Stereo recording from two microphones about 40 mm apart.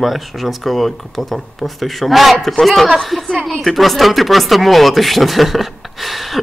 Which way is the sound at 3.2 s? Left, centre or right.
Centre.